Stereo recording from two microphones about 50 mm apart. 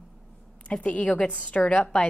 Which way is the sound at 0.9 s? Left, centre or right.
Left.